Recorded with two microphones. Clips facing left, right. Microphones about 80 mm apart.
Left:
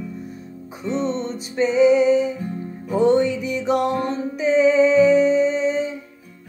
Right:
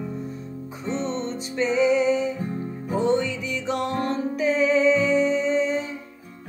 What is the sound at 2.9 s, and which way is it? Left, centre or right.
Music, right.